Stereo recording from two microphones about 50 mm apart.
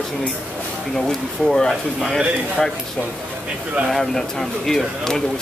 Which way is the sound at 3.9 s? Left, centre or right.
Centre.